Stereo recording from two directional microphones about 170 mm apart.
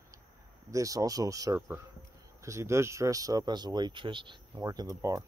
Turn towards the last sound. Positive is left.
turn(degrees=-20)  # may be behind; listen again after turning